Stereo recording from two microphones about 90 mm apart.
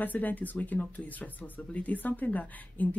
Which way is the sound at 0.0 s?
20° left (ahead or behind).